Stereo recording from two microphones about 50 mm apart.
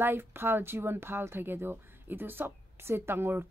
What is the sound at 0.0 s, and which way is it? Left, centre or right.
Speech, right.